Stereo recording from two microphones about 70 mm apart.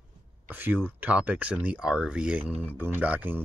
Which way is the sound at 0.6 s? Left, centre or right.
Right.